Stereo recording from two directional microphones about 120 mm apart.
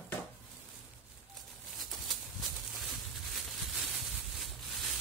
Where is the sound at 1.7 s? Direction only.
Centre (ahead or behind).